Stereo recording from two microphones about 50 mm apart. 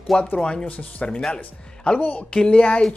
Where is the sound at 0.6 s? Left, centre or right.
Left.